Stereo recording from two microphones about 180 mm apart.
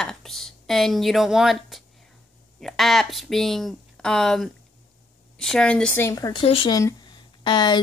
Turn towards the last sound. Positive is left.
turn(degrees=25)  # may be behind; listen again after turning